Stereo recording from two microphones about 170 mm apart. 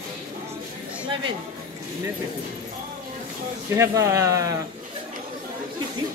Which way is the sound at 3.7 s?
15° right (ahead or behind).